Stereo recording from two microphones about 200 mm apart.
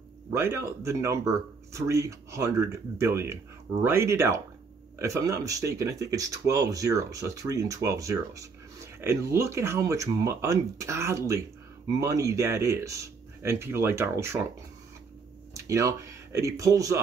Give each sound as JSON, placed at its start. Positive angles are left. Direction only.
{"t": 0.3, "sound": "speech", "side_deg": -15}
{"t": 15.5, "sound": "speech", "side_deg": -15}